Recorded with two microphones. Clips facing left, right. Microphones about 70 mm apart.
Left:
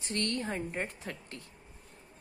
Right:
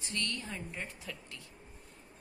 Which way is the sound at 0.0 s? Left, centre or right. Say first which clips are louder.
Left 5 dB; left.